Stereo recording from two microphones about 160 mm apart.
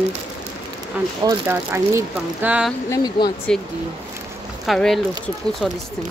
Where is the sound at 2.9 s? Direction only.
25° left (ahead or behind).